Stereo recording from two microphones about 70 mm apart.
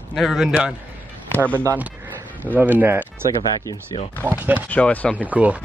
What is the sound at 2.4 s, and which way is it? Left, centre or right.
Speech, right.